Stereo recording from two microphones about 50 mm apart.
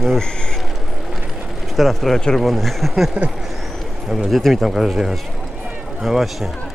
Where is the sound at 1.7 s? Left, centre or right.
Centre.